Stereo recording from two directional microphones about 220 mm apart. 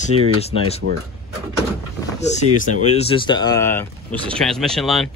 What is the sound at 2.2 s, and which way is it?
Speech, 30° left (ahead or behind).